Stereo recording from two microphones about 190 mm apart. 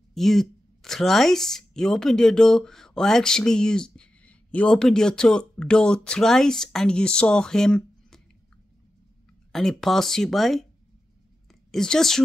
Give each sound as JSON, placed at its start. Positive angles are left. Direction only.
{"t": 0.1, "sound": "speech", "side_deg": 0}
{"t": 9.5, "sound": "speech", "side_deg": 0}
{"t": 11.7, "sound": "speech", "side_deg": 0}